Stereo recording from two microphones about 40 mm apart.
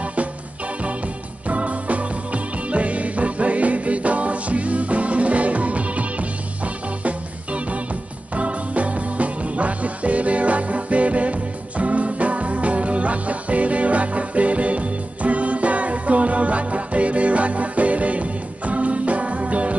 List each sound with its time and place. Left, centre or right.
1.5 s music: right